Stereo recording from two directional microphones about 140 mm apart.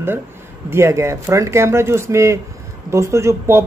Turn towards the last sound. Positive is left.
turn(degrees=-20)  # may be behind; listen again after turning